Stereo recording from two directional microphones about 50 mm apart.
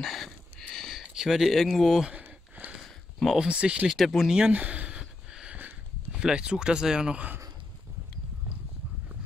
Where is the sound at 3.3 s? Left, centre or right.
Right.